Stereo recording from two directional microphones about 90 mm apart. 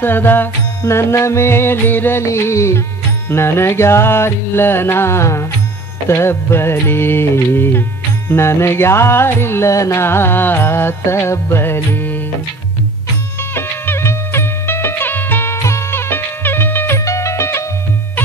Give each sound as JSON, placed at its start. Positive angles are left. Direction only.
{"t": 0.0, "sound": "music", "side_deg": 25}
{"t": 13.6, "sound": "music", "side_deg": 30}